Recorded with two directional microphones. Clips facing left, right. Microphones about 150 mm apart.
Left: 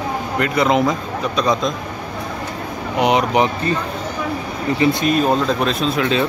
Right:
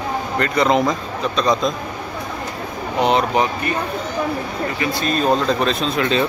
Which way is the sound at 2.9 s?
15° left (ahead or behind).